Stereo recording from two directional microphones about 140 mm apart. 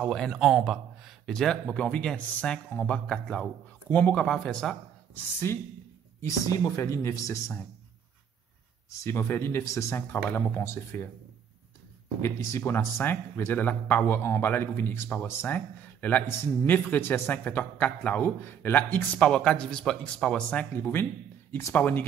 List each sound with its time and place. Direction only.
0.0 s speech: 5° left (ahead or behind)
5.5 s speech: 20° left (ahead or behind)
9.0 s speech: 20° left (ahead or behind)
12.2 s speech: 20° left (ahead or behind)